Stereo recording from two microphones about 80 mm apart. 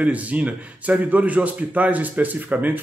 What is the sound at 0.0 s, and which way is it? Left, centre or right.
A man's voice, centre.